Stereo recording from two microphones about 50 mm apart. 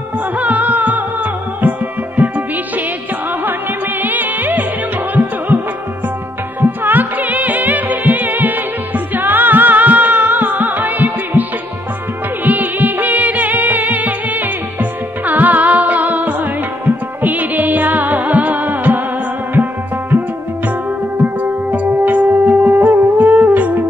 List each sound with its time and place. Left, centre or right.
0.4 s music: right
6.6 s music: right
12.4 s music: right